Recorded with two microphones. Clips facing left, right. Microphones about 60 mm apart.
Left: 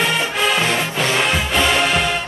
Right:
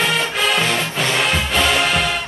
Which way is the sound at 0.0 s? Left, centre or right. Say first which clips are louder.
Even; centre.